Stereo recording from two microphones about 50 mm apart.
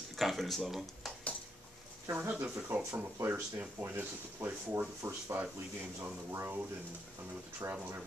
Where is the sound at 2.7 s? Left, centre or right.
Right.